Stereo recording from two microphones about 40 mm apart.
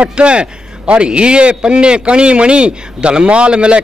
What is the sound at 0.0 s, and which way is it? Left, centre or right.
A man's voice, right.